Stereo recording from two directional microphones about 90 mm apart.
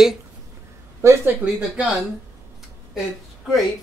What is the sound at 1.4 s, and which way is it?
Speech, 20° right (ahead or behind).